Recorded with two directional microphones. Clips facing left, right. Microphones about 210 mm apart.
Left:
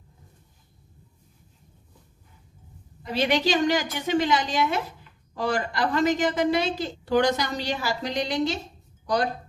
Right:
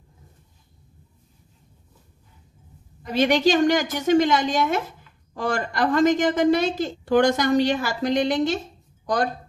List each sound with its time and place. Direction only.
3.0 s a woman's voice: 45° right (ahead or behind)